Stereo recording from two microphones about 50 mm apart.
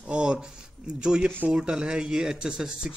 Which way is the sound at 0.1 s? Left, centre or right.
Centre.